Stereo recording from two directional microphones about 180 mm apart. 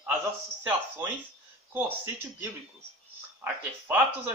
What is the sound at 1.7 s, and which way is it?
A man's voice, 10° right (ahead or behind).